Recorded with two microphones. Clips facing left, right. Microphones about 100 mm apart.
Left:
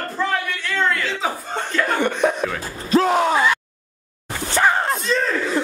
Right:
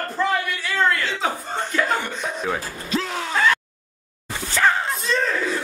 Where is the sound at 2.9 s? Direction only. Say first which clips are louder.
Left 10 dB; 45° left (ahead or behind).